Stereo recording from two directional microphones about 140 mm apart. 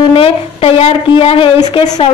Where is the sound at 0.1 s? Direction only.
40° left (ahead or behind).